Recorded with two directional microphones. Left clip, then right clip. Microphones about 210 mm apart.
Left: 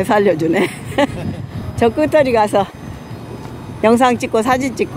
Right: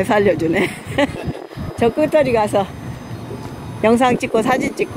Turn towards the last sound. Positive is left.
turn(degrees=25)  # may be behind; listen again after turning